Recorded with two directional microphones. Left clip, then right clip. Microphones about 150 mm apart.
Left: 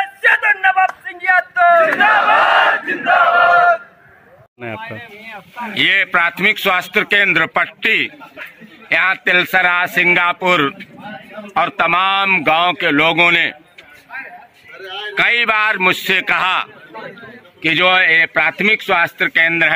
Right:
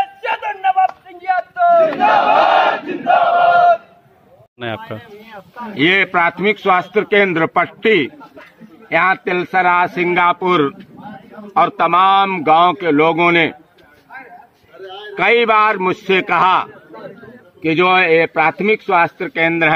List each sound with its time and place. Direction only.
0.0 s a sound: 20° right (ahead or behind)
1.9 s battle cry: 15° left (ahead or behind)
5.2 s speech: 40° left (ahead or behind)
5.8 s a man's voice: 5° left (ahead or behind)
15.1 s a man's voice: 5° left (ahead or behind)